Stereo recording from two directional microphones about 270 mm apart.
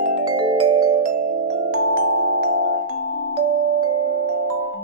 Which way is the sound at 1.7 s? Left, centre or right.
Right.